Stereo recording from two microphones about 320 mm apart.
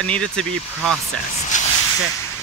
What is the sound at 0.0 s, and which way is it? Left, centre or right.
Speech, centre.